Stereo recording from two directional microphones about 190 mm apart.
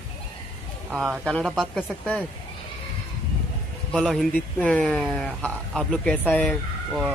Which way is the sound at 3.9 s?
Centre (ahead or behind).